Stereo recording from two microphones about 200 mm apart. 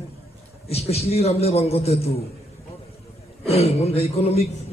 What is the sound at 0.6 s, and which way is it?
A man's voice, 30° left (ahead or behind).